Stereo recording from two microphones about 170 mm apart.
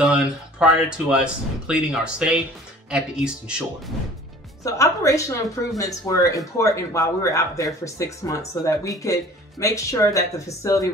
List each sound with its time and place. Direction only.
0.0 s speech: 5° right (ahead or behind)
4.6 s a woman's voice: 20° left (ahead or behind)